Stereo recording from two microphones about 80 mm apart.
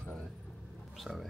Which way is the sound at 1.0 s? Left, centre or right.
Centre.